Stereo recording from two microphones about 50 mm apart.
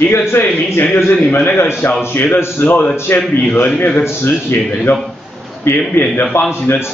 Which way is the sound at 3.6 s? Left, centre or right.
Left.